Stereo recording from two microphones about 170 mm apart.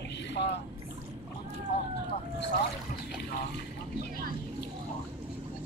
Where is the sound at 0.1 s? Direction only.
90° left.